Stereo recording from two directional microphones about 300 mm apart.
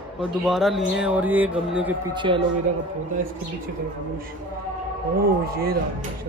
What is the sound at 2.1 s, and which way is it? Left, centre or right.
Speech, centre.